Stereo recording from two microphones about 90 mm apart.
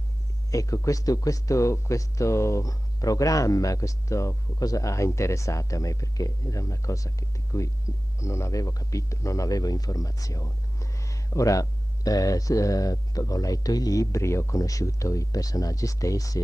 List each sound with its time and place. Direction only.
0.5 s speech: 40° left (ahead or behind)